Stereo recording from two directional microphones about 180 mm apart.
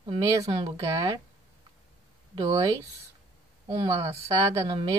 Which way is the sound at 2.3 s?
20° right (ahead or behind).